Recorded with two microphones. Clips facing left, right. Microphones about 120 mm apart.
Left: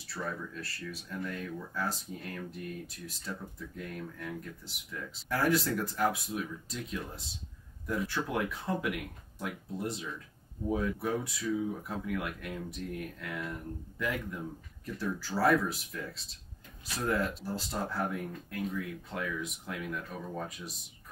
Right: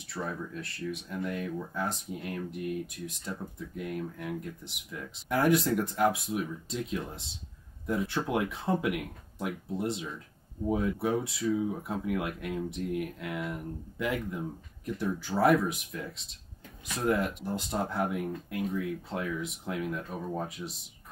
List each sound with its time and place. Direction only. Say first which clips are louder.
0.0 s speech: right 2 dB; 20° right (ahead or behind)